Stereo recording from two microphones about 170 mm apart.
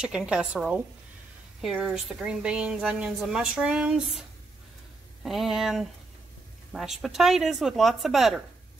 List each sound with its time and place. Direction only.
0.0 s a woman's voice: 5° right (ahead or behind)
5.2 s a woman's voice: centre (ahead or behind)
7.0 s a woman's voice: centre (ahead or behind)